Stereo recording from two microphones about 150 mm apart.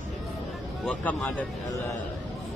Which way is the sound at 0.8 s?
5° left (ahead or behind).